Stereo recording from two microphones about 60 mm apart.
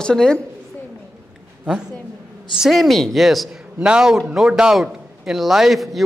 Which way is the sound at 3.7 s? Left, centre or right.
Centre.